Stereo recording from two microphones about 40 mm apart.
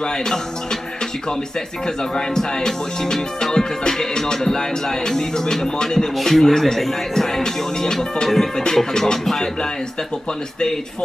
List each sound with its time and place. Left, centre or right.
0.0 s speech: centre
2.1 s music: centre